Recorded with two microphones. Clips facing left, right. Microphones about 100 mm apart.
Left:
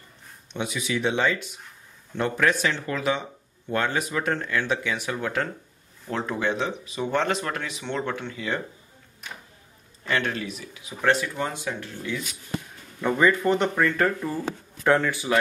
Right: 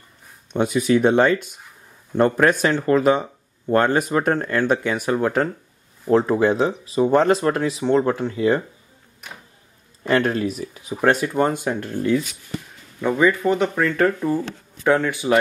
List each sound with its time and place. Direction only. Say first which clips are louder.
0.5 s speech: right 11 dB; 45° right (ahead or behind)
10.0 s speech: right 8 dB; 40° right (ahead or behind)
13.0 s speech: right 3 dB; 5° right (ahead or behind)